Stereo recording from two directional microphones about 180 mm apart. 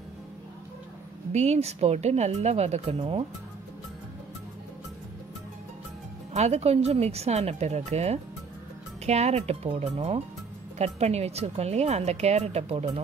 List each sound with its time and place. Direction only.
1.3 s speech: 35° right (ahead or behind)
6.3 s speech: 35° right (ahead or behind)